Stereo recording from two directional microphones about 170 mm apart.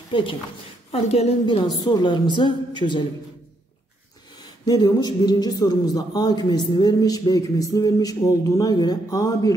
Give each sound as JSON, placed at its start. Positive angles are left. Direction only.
{"t": 0.1, "sound": "a woman's voice", "side_deg": 30}
{"t": 4.4, "sound": "speech", "side_deg": 25}